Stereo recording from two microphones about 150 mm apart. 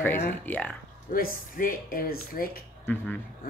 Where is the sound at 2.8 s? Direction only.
10° left (ahead or behind).